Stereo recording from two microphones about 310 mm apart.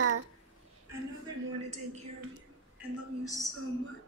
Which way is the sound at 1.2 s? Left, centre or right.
Right.